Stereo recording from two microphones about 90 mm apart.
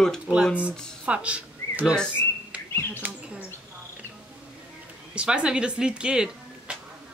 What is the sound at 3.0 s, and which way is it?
Speech, 20° right (ahead or behind).